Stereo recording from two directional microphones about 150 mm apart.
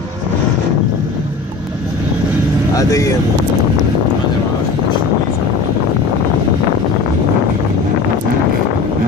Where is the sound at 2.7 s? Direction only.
25° left (ahead or behind).